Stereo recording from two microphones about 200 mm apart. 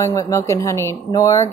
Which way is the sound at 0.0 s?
15° left (ahead or behind).